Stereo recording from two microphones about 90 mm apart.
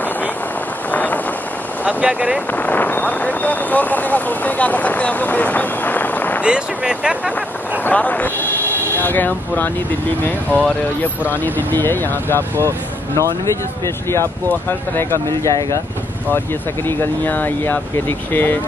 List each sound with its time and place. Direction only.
0.9 s vehicle: 20° left (ahead or behind)
1.9 s speech: 15° right (ahead or behind)
2.5 s speech: 20° left (ahead or behind)
6.4 s speech: 10° right (ahead or behind)
7.8 s speech: 15° left (ahead or behind); by 15.8 s 35° left (ahead or behind)
16.8 s speech: 20° left (ahead or behind)